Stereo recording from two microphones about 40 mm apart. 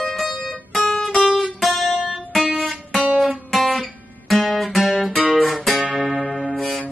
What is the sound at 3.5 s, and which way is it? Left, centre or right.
Guitar, centre.